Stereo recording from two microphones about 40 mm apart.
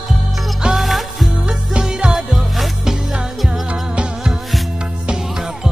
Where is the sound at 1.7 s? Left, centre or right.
Right.